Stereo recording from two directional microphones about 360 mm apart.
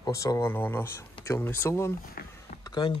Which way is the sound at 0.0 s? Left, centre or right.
Centre.